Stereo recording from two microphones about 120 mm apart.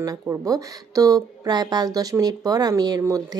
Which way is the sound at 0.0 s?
30° right (ahead or behind).